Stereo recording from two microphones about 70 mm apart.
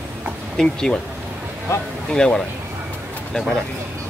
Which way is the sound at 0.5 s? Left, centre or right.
Centre.